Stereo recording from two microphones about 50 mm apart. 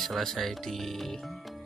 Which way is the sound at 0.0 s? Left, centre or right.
Centre.